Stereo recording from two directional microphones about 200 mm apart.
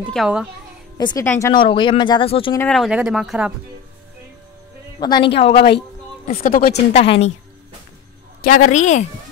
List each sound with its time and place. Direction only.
0.1 s speech: centre (ahead or behind)
0.9 s speech: 20° left (ahead or behind)
1.5 s speech: 25° left (ahead or behind)
2.7 s speech: 5° right (ahead or behind)
5.0 s speech: 25° left (ahead or behind)
6.2 s speech: 45° left (ahead or behind)
6.9 s speech: 30° left (ahead or behind)
8.5 s speech: 40° left (ahead or behind)